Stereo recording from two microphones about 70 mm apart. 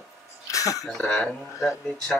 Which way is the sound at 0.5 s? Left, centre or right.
Left.